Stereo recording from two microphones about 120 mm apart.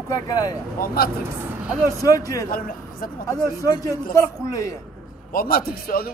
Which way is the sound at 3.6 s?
30° left (ahead or behind).